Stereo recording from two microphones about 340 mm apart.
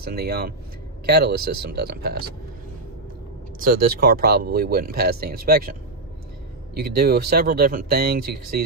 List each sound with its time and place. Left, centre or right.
0.0 s speech: right
3.5 s speech: right